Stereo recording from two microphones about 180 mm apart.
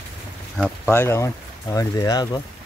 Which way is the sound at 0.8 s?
15° left (ahead or behind).